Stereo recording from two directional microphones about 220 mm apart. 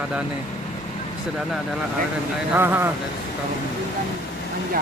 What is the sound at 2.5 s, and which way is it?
Speech, 10° right (ahead or behind).